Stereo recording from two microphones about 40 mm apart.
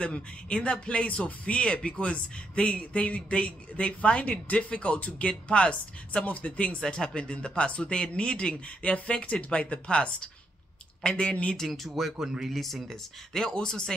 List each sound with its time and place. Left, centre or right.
0.0 s speech: left
6.8 s speech: centre
11.6 s speech: centre
12.9 s speech: centre